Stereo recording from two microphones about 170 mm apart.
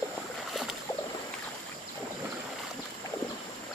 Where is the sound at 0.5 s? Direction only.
Centre (ahead or behind).